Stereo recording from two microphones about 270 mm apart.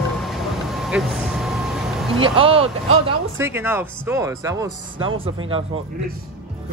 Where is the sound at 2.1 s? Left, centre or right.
Centre.